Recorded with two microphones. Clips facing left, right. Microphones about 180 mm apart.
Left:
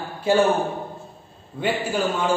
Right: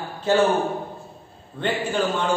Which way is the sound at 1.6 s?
10° left (ahead or behind).